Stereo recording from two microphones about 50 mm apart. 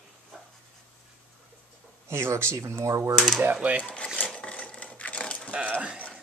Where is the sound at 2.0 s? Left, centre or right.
Right.